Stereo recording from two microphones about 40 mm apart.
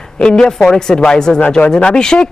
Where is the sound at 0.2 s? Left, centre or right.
Left.